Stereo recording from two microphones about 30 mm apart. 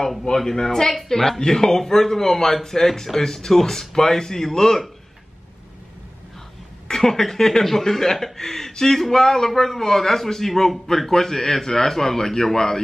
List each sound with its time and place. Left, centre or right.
0.4 s a man's voice: centre
7.0 s a man's voice: centre